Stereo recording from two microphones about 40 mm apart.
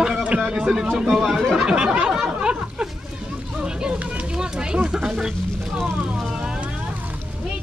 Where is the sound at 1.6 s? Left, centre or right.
Right.